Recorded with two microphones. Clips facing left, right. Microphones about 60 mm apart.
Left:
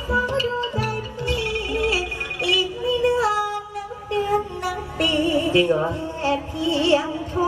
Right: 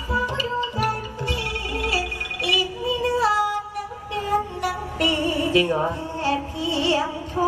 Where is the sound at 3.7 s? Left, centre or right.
Left.